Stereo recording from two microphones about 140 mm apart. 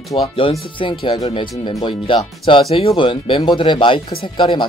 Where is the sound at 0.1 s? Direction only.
40° left (ahead or behind).